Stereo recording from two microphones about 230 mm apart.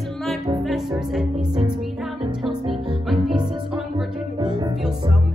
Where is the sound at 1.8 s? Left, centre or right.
Centre.